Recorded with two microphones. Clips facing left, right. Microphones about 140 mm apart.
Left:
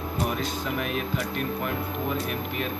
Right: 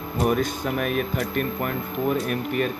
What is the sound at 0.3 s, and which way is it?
Speech, 50° right (ahead or behind).